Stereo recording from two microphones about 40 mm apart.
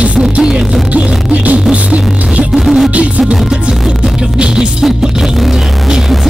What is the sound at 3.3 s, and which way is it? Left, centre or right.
Music, right.